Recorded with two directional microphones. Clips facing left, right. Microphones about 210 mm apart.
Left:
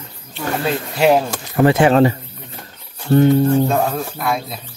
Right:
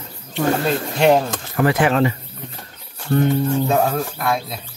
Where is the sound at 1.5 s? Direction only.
25° left (ahead or behind).